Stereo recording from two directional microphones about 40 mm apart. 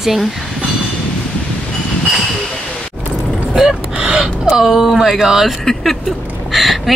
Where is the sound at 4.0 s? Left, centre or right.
Centre.